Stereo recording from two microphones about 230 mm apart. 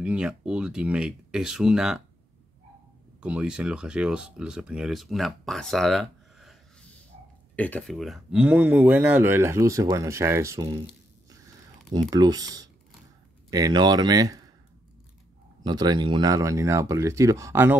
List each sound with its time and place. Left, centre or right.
0.0 s speech: centre
3.2 s speech: centre
11.2 s biting: centre
11.9 s speech: centre
15.6 s speech: centre